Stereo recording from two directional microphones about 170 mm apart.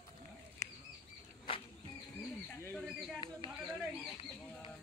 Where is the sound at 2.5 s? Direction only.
10° left (ahead or behind).